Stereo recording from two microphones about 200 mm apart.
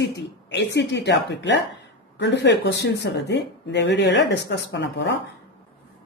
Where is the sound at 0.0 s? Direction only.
60° left (ahead or behind).